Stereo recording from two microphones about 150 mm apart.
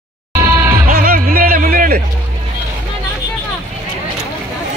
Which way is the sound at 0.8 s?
75° right (ahead or behind).